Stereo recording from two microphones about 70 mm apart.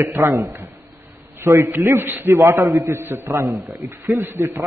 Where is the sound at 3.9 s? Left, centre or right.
Right.